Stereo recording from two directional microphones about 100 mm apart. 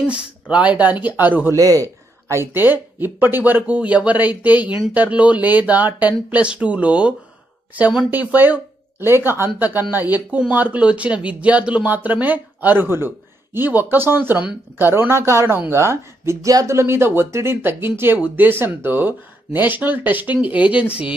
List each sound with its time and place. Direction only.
0.1 s speech: 10° right (ahead or behind)
1.5 s speech: 35° right (ahead or behind); by 21.1 s 15° right (ahead or behind)